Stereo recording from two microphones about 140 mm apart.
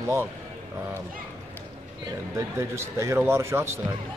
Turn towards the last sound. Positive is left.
turn(degrees=-20)  # may be behind; listen again after turning